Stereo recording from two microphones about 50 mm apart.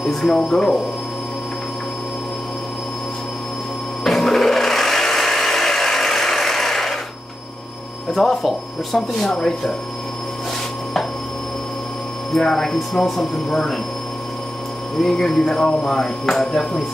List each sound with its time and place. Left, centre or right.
0.3 s speech: centre
4.0 s sewing machine: centre
8.1 s speech: centre
12.4 s speech: centre
15.0 s speech: centre